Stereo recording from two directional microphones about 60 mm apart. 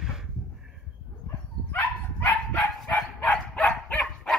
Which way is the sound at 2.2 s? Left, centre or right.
Left.